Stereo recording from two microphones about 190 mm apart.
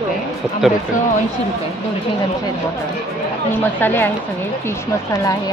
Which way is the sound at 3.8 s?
10° left (ahead or behind).